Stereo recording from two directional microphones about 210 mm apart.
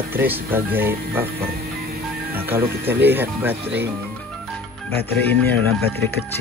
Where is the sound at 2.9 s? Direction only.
10° right (ahead or behind).